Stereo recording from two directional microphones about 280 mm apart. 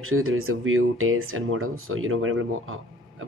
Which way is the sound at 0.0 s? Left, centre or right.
Right.